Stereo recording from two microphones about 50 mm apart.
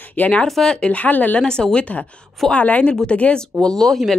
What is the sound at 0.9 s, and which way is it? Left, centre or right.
Speech, left.